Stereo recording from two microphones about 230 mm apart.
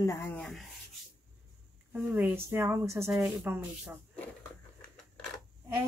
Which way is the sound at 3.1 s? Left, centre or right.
Centre.